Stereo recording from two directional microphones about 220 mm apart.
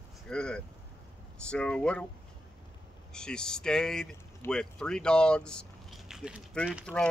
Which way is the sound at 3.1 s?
5° left (ahead or behind).